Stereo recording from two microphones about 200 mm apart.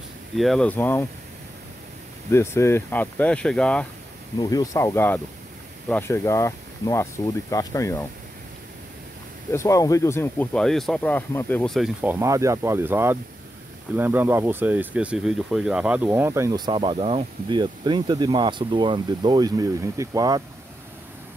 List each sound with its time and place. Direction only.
0.4 s speech: 5° left (ahead or behind)
2.3 s speech: 15° left (ahead or behind)
4.4 s speech: 20° left (ahead or behind)
9.5 s speech: 15° left (ahead or behind); by 20.4 s 20° right (ahead or behind)